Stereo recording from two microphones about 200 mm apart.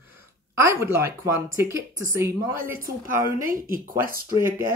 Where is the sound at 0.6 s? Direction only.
15° right (ahead or behind).